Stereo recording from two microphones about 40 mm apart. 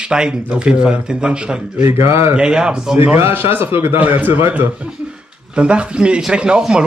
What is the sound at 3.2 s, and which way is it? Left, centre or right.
Speech, right.